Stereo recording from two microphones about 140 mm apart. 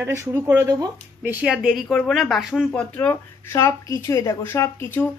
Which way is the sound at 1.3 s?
5° right (ahead or behind).